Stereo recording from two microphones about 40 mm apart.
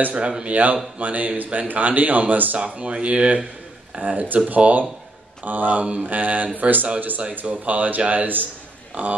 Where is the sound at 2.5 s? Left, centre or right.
Right.